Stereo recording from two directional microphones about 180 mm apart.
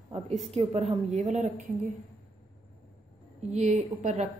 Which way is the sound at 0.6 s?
35° right (ahead or behind).